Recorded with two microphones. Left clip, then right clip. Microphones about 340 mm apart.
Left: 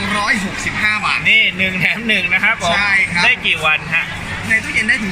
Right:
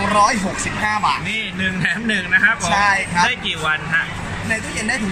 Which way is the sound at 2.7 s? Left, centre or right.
Centre.